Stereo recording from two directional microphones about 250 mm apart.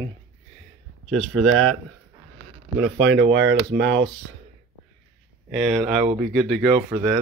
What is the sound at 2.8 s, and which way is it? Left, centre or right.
Speech, right.